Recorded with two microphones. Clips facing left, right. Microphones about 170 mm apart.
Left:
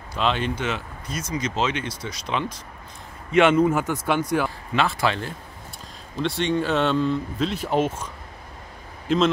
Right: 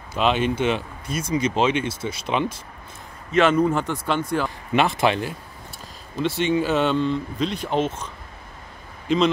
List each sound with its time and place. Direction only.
0.1 s speech: 15° right (ahead or behind)
3.3 s a man's voice: 10° left (ahead or behind)
4.7 s speech: 20° right (ahead or behind)
6.2 s speech: 5° right (ahead or behind)